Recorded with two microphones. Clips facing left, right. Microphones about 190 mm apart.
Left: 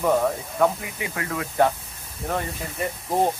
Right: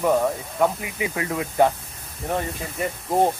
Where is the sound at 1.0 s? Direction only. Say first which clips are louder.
Right 3 dB; 20° right (ahead or behind).